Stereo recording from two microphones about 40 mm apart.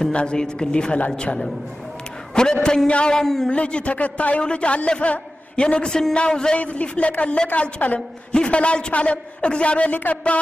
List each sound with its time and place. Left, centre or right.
0.1 s a man's voice: left
3.1 s speech: centre
3.4 s a woman's voice: left
6.6 s a woman's voice: left
8.3 s a man's voice: left